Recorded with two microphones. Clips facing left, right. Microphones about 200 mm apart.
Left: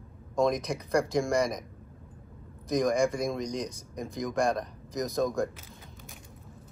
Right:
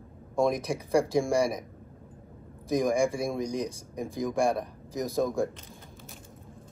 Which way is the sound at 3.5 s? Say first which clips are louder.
Right 2 dB; 15° left (ahead or behind).